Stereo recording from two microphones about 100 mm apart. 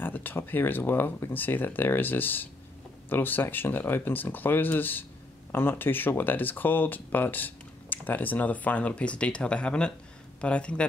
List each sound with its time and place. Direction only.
0.0 s speech: 20° left (ahead or behind)